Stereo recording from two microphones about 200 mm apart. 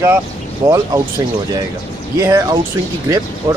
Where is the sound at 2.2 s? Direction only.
15° right (ahead or behind).